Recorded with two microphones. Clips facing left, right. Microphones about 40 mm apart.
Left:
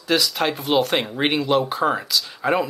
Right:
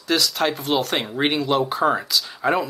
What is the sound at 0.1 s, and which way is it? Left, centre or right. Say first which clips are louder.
Speech: even; centre.